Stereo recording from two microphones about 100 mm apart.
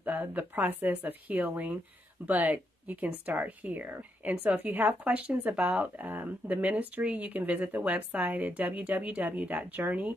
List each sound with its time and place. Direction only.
0.0 s speech: 15° right (ahead or behind)